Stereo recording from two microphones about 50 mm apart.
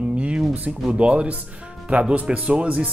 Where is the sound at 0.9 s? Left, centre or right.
Right.